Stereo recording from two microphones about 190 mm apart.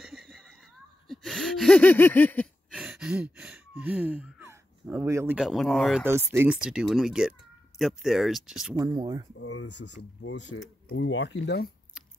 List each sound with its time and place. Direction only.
0.0 s a sound: centre (ahead or behind)
2.7 s a sound: 5° right (ahead or behind)
6.0 s speech: 10° right (ahead or behind)
8.7 s speech: 20° right (ahead or behind)
9.4 s speech: 80° left
10.2 s speech: 80° left; by 11.7 s 60° left (ahead or behind)